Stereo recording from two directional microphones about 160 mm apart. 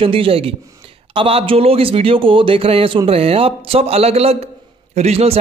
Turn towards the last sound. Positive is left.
turn(degrees=-40)  # may be behind; listen again after turning